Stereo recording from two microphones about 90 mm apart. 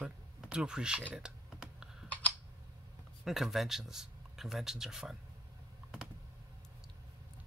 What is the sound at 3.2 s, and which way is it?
Speech, 5° right (ahead or behind).